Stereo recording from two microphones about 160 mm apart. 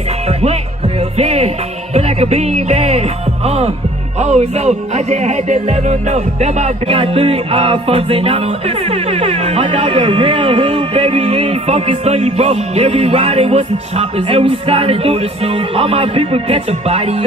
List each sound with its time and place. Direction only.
1.1 s music: 40° right (ahead or behind)